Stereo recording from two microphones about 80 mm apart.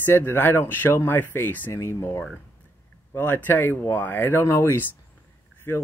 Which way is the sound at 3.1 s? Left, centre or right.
Left.